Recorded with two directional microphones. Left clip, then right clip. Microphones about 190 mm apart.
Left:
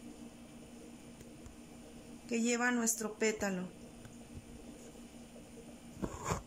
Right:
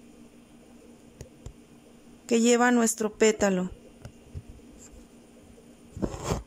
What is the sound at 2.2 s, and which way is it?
A woman's voice, 40° right (ahead or behind).